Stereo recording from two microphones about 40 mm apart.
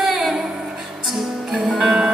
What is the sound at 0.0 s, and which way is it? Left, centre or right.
Music, centre.